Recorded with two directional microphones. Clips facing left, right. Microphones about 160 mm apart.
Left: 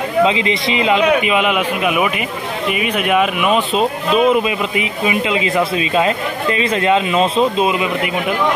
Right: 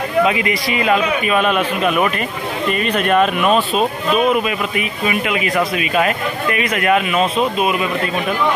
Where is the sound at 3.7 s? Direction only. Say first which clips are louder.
Left 1 dB; 20° left (ahead or behind).